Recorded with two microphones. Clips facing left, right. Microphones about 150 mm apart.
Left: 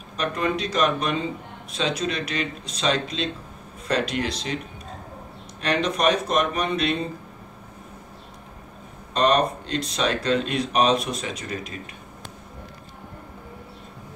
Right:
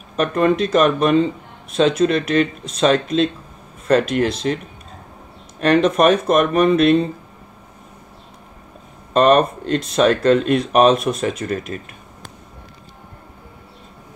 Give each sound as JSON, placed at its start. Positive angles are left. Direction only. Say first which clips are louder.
{"t": 0.1, "sound": "speech", "louder": "right 8 dB", "side_deg": -50}
{"t": 5.6, "sound": "speech", "louder": "right 9 dB", "side_deg": -50}
{"t": 9.1, "sound": "speech", "louder": "right 7 dB", "side_deg": -50}